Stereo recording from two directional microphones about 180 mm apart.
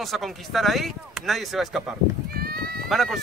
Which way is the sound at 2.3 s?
60° right (ahead or behind).